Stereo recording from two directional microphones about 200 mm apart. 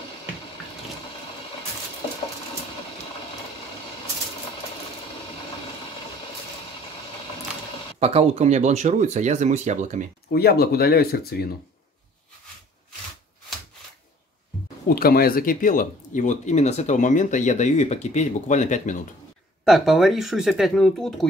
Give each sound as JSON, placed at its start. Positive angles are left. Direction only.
{"t": 2.0, "sound": "a sound", "side_deg": 25}
{"t": 8.0, "sound": "speech", "side_deg": -30}
{"t": 10.3, "sound": "speech", "side_deg": 50}
{"t": 14.9, "sound": "speech", "side_deg": 50}
{"t": 19.6, "sound": "speech", "side_deg": 0}